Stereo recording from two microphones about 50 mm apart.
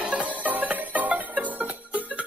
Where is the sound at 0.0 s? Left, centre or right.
Right.